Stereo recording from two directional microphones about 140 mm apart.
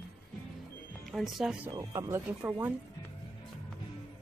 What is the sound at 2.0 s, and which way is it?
Speech, 20° right (ahead or behind).